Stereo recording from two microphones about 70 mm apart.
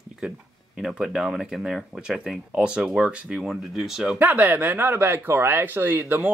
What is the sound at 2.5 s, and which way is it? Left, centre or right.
Speech, centre.